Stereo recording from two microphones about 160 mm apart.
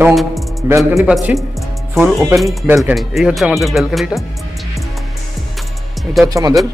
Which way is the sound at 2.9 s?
Centre (ahead or behind).